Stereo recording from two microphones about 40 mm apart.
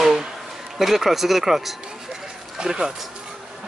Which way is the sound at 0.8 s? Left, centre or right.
Centre.